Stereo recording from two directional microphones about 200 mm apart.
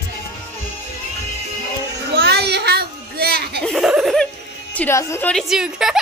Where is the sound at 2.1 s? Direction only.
55° right (ahead or behind).